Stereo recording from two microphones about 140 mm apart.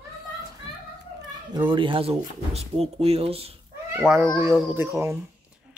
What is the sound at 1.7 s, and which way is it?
Speech, 35° right (ahead or behind).